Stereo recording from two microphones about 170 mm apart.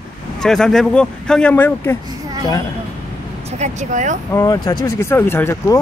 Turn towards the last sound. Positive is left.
turn(degrees=15)  # may be behind; listen again after turning